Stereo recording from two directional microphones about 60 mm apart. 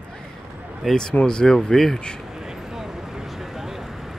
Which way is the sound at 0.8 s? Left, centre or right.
Centre.